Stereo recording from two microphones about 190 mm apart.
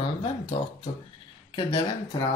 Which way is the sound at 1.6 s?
20° left (ahead or behind).